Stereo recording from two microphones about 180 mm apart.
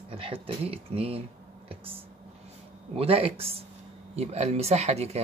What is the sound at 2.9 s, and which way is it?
Speech, 35° right (ahead or behind).